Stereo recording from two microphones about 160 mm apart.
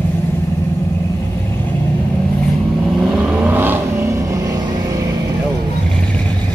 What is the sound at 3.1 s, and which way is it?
Vehicle, 10° right (ahead or behind).